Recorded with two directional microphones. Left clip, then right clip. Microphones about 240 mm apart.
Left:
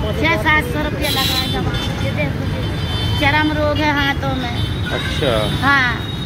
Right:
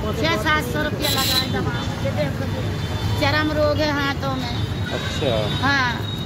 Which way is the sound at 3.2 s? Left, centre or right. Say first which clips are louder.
Left 3 dB; centre.